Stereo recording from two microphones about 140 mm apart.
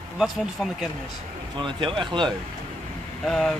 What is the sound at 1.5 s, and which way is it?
Speech, 35° right (ahead or behind).